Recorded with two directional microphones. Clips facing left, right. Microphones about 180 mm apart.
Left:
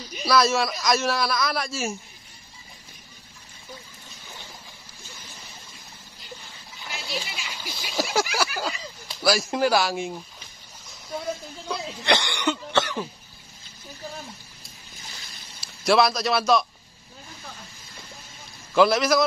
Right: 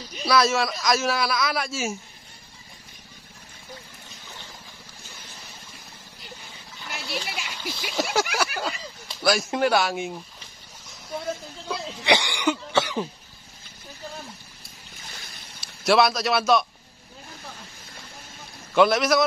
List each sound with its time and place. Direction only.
0.2 s a man's voice: centre (ahead or behind)
7.2 s a sound: 60° right (ahead or behind)
7.6 s a sound: centre (ahead or behind)
8.5 s a man's voice: centre (ahead or behind)
12.0 s cough: 10° right (ahead or behind)
15.6 s a man's voice: centre (ahead or behind)
18.8 s a man's voice: centre (ahead or behind)